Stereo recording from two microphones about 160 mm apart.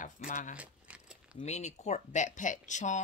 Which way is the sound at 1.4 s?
45° left (ahead or behind).